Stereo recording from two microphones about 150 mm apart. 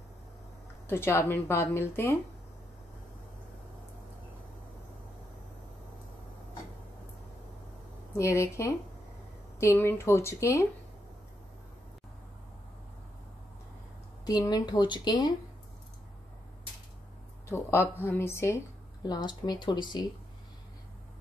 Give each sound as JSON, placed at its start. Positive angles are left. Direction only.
{"t": 0.8, "sound": "speech", "side_deg": 15}
{"t": 8.2, "sound": "speech", "side_deg": 20}
{"t": 14.2, "sound": "speech", "side_deg": 25}
{"t": 17.5, "sound": "speech", "side_deg": 15}
{"t": 19.0, "sound": "speech", "side_deg": 30}